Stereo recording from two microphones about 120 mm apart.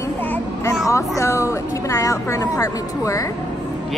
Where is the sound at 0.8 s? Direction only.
25° left (ahead or behind).